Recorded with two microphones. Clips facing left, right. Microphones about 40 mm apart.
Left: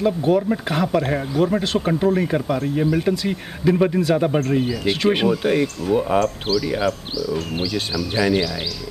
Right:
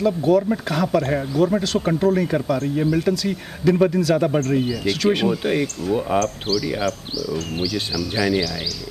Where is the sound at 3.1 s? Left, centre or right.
Left.